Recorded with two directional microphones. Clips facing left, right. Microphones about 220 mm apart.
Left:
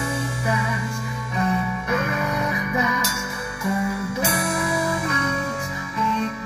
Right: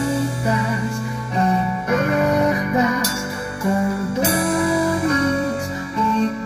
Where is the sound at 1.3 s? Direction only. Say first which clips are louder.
Right 4 dB; 35° right (ahead or behind).